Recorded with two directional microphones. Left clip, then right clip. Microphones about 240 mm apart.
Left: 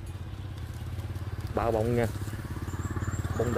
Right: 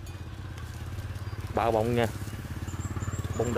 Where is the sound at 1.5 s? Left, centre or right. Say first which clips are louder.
Right 2 dB; centre.